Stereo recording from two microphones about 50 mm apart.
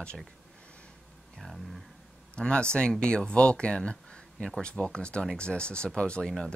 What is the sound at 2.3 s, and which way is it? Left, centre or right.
Speech, centre.